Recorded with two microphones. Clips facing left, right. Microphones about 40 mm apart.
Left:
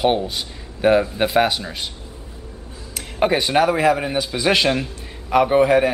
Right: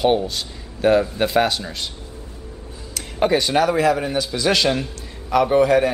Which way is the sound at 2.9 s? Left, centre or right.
Centre.